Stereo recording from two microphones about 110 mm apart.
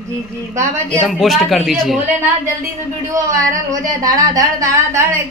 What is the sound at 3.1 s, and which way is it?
Speech, 30° right (ahead or behind).